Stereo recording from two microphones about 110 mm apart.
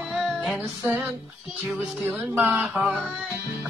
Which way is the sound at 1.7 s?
15° right (ahead or behind).